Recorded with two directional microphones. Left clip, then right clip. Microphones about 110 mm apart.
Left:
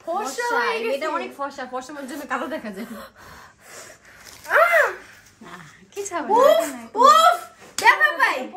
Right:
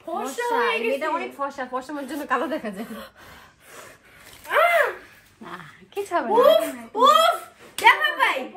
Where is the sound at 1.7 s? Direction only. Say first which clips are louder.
Right 1 dB; 35° right (ahead or behind).